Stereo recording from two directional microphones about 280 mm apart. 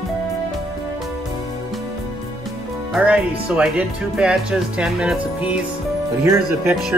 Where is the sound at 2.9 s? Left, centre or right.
Centre.